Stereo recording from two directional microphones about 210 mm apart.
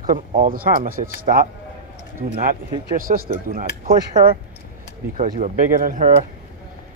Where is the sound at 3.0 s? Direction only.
40° right (ahead or behind).